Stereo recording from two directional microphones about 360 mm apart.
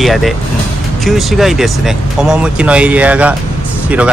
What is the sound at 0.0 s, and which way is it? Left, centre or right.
Speech, centre.